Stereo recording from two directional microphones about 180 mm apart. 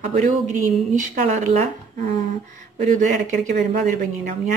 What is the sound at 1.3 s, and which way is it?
Speech, 40° right (ahead or behind).